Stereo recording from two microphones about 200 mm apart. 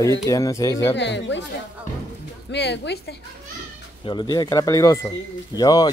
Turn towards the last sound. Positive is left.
turn(degrees=20)  # may be behind; listen again after turning